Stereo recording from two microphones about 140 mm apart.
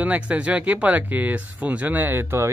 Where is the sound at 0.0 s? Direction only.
10° right (ahead or behind).